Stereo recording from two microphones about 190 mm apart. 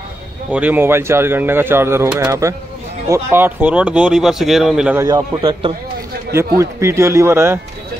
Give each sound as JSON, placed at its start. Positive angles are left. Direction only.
{"t": 0.5, "sound": "speech", "side_deg": -10}
{"t": 5.0, "sound": "a man's voice", "side_deg": -20}
{"t": 6.3, "sound": "speech", "side_deg": -15}